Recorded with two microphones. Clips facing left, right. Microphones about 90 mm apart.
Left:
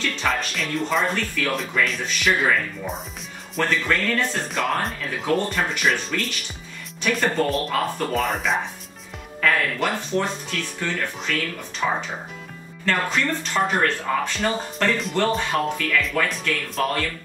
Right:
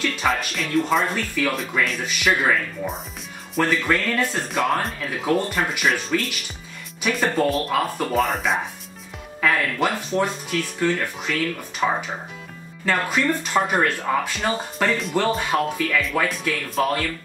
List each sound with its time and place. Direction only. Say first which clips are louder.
0.0 s speech: right 2 dB; 10° right (ahead or behind)
9.4 s music: even; 10° right (ahead or behind)
9.8 s speech: right 2 dB; centre (ahead or behind)